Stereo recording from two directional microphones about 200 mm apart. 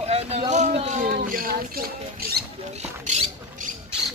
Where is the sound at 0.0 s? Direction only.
30° right (ahead or behind).